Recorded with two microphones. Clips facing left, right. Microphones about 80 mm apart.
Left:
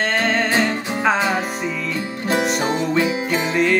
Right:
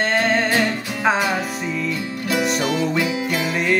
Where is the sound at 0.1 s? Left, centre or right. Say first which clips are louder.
Right 1 dB; centre.